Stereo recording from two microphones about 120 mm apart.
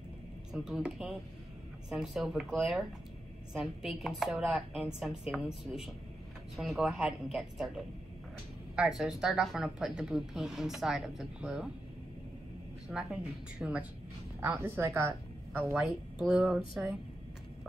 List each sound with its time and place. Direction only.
0.5 s a woman's voice: 5° right (ahead or behind)
12.8 s a woman's voice: 5° right (ahead or behind)
14.4 s a woman's voice: 20° right (ahead or behind)
15.8 s a woman's voice: 5° right (ahead or behind)